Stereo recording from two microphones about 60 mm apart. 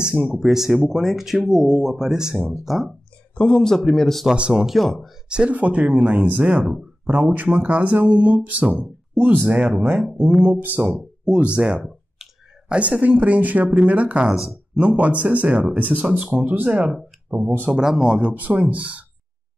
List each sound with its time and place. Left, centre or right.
0.3 s speech: centre
3.3 s speech: centre
3.7 s a man's voice: centre
4.3 s speech: centre
4.6 s speech: centre
5.3 s speech: right
11.8 s clicking: centre
12.7 s speech: right
17.3 s speech: right
17.6 s speech: centre